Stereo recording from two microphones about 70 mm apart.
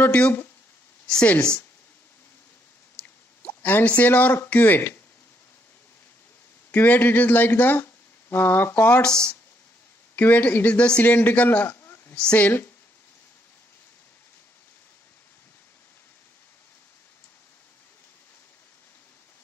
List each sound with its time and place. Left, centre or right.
0.0 s speech: left
3.0 s speech: left
6.7 s speech: left
9.0 s speech: centre
10.1 s a man's voice: left
12.2 s speech: centre